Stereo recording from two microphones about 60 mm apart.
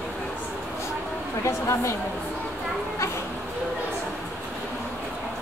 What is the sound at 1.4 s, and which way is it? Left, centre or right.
Speech, left.